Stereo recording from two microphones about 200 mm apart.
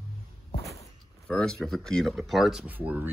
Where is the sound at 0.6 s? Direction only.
15° left (ahead or behind).